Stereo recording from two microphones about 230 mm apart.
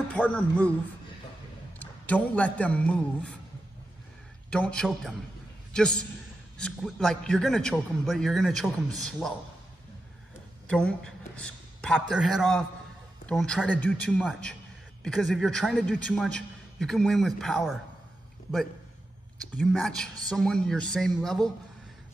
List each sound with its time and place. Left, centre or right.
0.1 s a man's voice: centre
1.8 s a man's voice: centre
4.5 s a man's voice: centre
10.7 s a man's voice: centre
19.5 s a man's voice: centre